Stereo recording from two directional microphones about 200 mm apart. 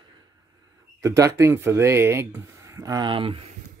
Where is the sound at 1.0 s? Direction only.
15° right (ahead or behind).